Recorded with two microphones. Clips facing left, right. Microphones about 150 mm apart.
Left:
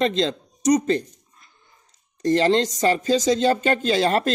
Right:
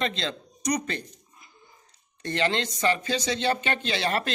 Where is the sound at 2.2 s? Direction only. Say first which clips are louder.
Left 9 dB; 35° left (ahead or behind).